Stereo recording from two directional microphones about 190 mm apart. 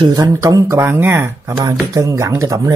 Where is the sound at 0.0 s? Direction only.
20° right (ahead or behind).